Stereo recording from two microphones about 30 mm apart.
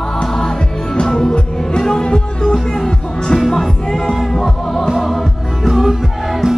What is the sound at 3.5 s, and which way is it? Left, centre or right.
Music, centre.